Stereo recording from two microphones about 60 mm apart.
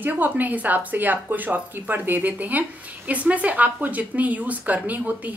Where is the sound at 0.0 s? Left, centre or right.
Right.